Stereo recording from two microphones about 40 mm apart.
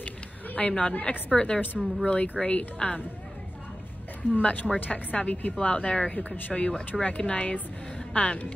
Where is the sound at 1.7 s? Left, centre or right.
Centre.